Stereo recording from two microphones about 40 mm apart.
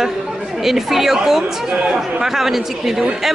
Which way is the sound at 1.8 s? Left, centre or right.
Centre.